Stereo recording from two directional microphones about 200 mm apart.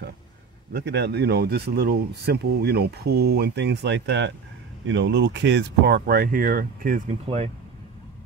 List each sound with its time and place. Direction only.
0.7 s speech: 55° right (ahead or behind)
7.2 s speech: 30° right (ahead or behind)